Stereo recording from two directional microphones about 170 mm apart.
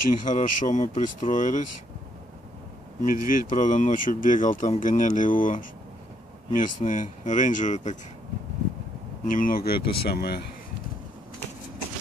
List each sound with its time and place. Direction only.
0.2 s speech: 45° left (ahead or behind)
3.0 s speech: 50° left (ahead or behind)
9.2 s speech: 55° left (ahead or behind); by 10.4 s 70° left (ahead or behind)